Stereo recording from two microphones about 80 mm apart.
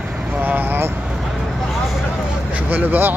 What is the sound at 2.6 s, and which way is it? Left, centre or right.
Speech, right.